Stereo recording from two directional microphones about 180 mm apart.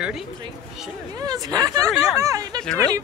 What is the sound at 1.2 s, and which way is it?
Speech, 20° right (ahead or behind).